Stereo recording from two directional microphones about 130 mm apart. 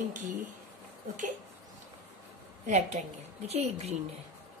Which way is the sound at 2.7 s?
60° right (ahead or behind).